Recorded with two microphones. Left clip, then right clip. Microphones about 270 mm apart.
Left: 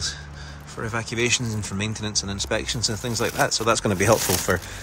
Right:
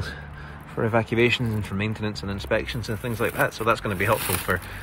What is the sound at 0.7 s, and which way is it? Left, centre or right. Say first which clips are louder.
Speech: right 5 dB; centre.